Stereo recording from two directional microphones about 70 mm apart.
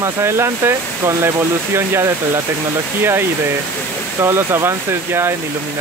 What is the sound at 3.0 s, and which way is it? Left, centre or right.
Speech, right.